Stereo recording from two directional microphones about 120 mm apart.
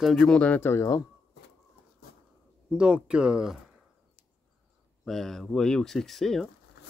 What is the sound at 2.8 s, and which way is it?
Speech, 10° right (ahead or behind).